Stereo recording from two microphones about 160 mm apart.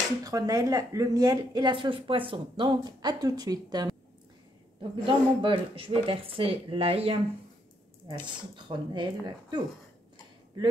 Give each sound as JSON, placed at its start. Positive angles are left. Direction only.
{"t": 0.2, "sound": "a woman's voice", "side_deg": -20}
{"t": 5.0, "sound": "a woman's voice", "side_deg": -35}